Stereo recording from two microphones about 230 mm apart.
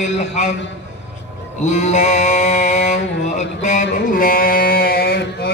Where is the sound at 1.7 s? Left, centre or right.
Left.